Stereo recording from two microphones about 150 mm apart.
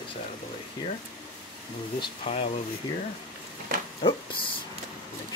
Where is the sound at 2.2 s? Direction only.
45° left (ahead or behind).